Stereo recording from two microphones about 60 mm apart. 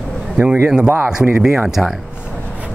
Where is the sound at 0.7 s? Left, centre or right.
Centre.